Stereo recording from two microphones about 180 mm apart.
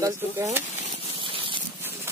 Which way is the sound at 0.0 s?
15° right (ahead or behind).